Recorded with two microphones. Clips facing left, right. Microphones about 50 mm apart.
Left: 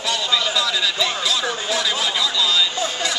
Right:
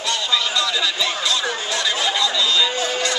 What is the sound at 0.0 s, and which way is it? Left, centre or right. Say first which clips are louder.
Chatter: even; centre.